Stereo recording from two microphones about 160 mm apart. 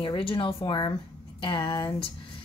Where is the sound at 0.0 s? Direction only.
35° left (ahead or behind).